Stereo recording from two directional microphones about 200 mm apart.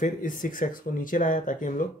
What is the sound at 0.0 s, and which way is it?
Speech, 40° left (ahead or behind).